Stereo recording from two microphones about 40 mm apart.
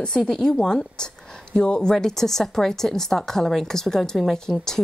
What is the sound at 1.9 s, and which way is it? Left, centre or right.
A woman's voice, centre.